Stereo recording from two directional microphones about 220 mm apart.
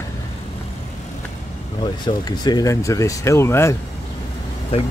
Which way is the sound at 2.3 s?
15° left (ahead or behind).